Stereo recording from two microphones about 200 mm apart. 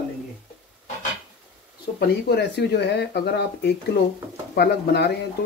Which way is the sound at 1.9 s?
55° left (ahead or behind).